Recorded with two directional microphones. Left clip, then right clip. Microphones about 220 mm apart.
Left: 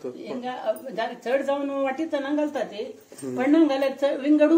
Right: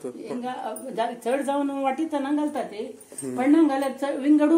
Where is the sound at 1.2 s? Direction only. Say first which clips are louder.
Left 3 dB; 40° right (ahead or behind).